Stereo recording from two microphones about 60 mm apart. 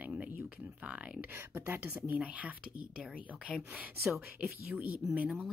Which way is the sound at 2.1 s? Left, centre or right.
Centre.